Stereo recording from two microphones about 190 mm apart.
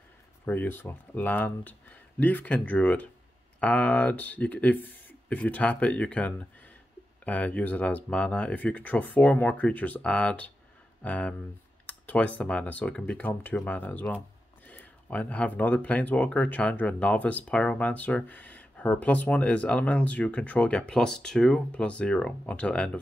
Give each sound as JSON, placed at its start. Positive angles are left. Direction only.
{"t": 0.5, "sound": "speech", "side_deg": 10}